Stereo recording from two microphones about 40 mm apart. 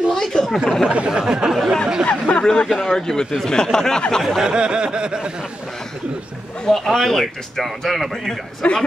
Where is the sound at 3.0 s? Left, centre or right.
Centre.